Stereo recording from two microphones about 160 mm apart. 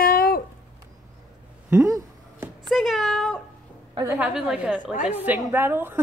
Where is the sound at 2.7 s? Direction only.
Centre (ahead or behind).